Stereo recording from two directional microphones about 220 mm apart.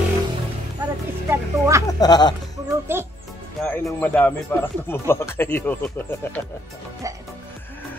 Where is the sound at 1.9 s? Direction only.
20° left (ahead or behind).